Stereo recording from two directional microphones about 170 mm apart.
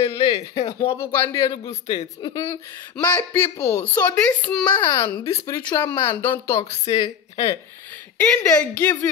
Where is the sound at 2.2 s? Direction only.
20° left (ahead or behind).